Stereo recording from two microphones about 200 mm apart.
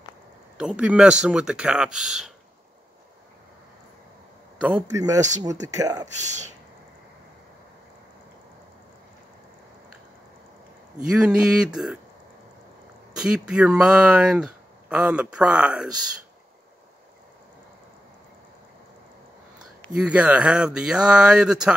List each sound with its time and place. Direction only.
0.6 s speech: 5° right (ahead or behind)
4.6 s a man's voice: 10° right (ahead or behind)
6.2 s speech: 35° right (ahead or behind)
11.1 s speech: 5° right (ahead or behind)
13.1 s speech: 5° right (ahead or behind)
20.0 s speech: 5° right (ahead or behind)